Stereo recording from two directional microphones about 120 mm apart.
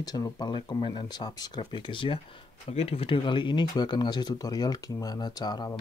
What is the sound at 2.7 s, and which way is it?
Speech, 55° left (ahead or behind).